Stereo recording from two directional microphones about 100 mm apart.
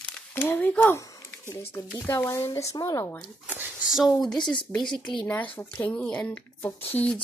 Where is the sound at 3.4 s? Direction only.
15° right (ahead or behind).